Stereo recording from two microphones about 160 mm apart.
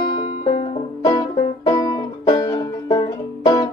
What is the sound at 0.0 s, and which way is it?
Music, 35° left (ahead or behind).